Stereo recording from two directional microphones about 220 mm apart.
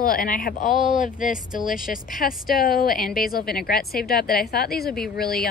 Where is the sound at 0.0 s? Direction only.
40° left (ahead or behind).